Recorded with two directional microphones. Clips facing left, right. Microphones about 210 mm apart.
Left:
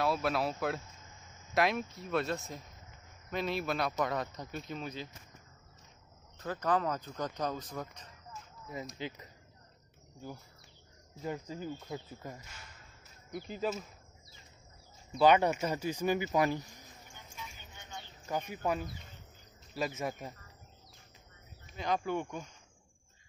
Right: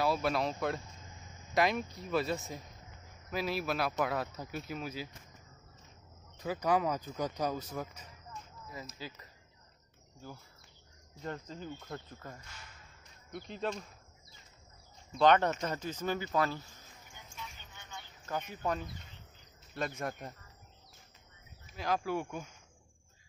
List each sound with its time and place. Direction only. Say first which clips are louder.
0.0 s speech: even; centre (ahead or behind)
6.3 s speech: right 1 dB; 10° right (ahead or behind)
8.9 s speech: left 5 dB; 20° left (ahead or behind)
11.2 s speech: left 3 dB; 10° left (ahead or behind)
15.1 s speech: left 1 dB; 10° left (ahead or behind)
18.5 s speech: left 1 dB; 10° left (ahead or behind)
21.6 s speech: even; 5° right (ahead or behind)